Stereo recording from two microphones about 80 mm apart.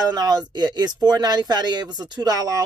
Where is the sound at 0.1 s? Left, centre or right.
Right.